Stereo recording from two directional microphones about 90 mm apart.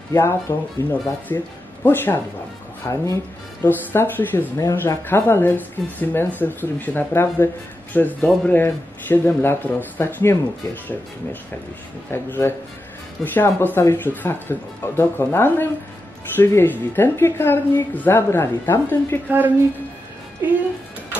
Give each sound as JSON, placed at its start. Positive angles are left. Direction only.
{"t": 0.1, "sound": "speech", "side_deg": 30}
{"t": 4.6, "sound": "speech", "side_deg": 35}
{"t": 5.0, "sound": "speech", "side_deg": 25}
{"t": 12.1, "sound": "speech", "side_deg": 25}
{"t": 19.2, "sound": "a woman's voice", "side_deg": -20}